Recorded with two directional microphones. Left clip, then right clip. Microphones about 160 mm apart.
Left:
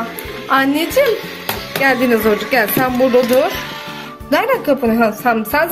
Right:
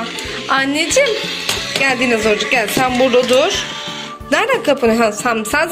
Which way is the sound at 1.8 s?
15° left (ahead or behind).